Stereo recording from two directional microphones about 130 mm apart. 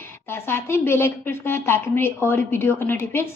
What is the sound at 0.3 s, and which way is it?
A woman's voice, 20° left (ahead or behind).